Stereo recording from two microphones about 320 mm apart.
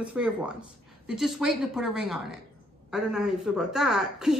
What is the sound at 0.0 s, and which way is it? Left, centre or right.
A woman's voice, centre.